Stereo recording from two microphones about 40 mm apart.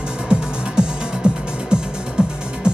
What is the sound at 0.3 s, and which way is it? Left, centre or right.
Music, right.